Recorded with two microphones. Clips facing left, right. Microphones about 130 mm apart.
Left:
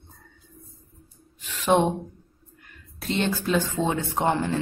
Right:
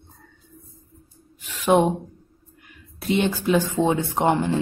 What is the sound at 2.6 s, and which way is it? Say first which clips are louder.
Speech: right 5 dB; 10° right (ahead or behind).